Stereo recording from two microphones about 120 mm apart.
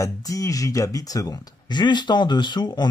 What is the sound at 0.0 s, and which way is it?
Speech, 30° left (ahead or behind).